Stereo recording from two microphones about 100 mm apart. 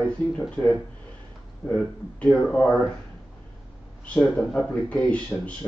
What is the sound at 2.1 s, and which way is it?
Speech, 10° left (ahead or behind).